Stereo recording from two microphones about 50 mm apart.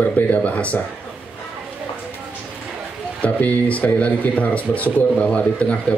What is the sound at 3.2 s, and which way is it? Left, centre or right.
A man's voice, left.